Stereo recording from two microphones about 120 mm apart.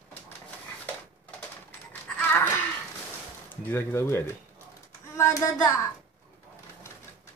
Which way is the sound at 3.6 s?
20° left (ahead or behind).